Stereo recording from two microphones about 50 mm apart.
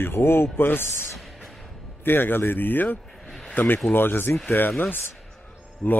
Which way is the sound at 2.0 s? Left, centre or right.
Left.